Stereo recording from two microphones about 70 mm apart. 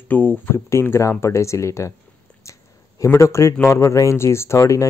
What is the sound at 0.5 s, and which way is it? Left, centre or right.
Speech, left.